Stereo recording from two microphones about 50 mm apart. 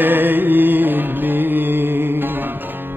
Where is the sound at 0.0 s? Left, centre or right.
Right.